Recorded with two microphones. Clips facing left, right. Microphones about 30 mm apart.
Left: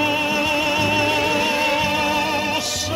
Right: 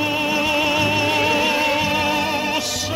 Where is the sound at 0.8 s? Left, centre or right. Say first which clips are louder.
Even; centre.